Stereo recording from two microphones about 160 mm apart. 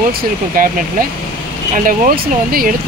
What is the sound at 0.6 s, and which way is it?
Speech, 60° right (ahead or behind).